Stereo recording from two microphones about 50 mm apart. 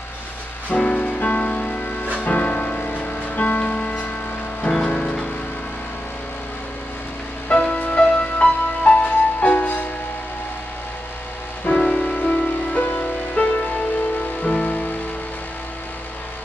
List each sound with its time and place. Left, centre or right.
0.7 s music: left
7.5 s music: left
11.7 s music: centre
12.0 s music: left